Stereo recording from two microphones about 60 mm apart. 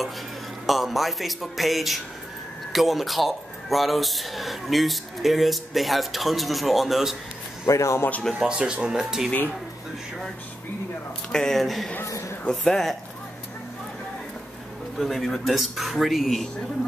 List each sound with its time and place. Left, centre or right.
0.7 s speech: centre
7.6 s a man's voice: left
8.5 s speech: centre
11.3 s speech: centre
12.0 s a sound: left
12.4 s speech: centre
15.0 s speech: centre